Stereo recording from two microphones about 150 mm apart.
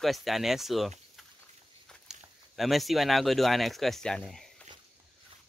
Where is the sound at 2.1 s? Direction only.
5° right (ahead or behind).